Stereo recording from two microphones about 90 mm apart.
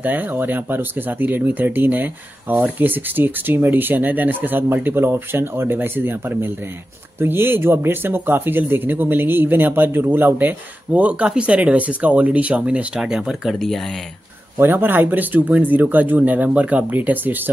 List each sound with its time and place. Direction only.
0.0 s speech: 20° right (ahead or behind); by 13.9 s centre (ahead or behind)
14.6 s speech: 25° right (ahead or behind)